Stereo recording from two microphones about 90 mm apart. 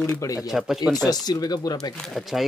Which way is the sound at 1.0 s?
45° left (ahead or behind).